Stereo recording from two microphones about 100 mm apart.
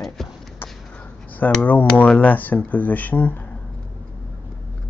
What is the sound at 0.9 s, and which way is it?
Speech, 15° left (ahead or behind).